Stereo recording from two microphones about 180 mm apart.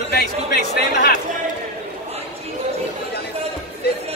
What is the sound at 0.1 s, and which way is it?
Speech, 60° left (ahead or behind).